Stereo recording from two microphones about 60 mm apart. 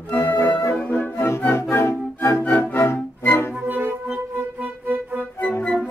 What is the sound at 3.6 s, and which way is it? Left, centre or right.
Music, right.